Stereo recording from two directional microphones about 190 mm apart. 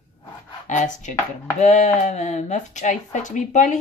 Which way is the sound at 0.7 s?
40° left (ahead or behind).